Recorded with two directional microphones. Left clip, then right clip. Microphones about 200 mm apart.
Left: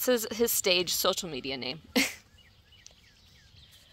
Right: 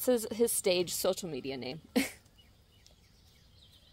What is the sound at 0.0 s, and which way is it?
Speech, centre (ahead or behind).